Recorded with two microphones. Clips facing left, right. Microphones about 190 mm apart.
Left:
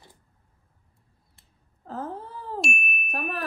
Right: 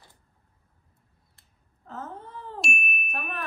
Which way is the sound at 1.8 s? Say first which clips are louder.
Left 5 dB; 35° left (ahead or behind).